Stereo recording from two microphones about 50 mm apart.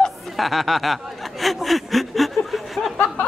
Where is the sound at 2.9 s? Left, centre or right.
Left.